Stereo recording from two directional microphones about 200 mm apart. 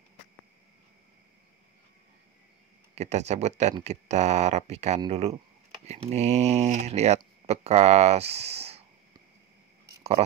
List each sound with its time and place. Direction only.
2.9 s speech: 35° right (ahead or behind)